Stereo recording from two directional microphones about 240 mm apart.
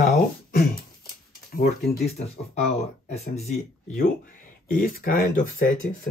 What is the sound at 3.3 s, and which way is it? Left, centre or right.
Speech, left.